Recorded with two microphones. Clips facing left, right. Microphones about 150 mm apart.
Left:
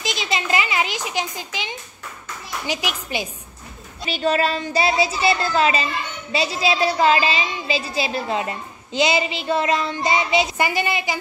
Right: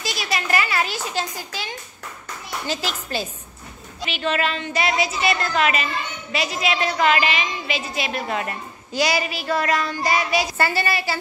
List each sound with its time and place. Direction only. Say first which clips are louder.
0.0 s speech: left 1 dB; 20° left (ahead or behind)
4.0 s a woman's voice: left 3 dB; 35° left (ahead or behind); by 11.1 s 15° left (ahead or behind)